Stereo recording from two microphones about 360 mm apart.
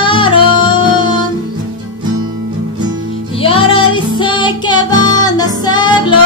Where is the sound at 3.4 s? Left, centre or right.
Centre.